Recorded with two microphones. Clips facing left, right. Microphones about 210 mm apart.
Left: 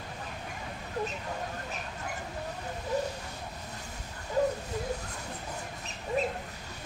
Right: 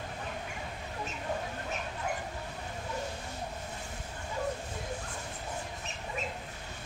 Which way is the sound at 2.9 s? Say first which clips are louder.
Left 8 dB; 40° left (ahead or behind).